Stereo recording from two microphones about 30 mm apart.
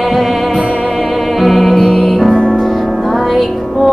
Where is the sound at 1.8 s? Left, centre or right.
Centre.